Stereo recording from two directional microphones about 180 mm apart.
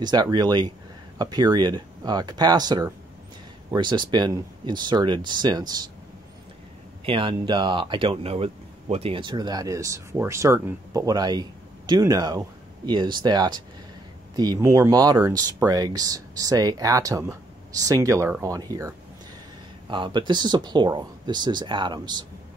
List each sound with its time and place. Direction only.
0.0 s speech: 25° right (ahead or behind)
7.1 s speech: 30° right (ahead or behind)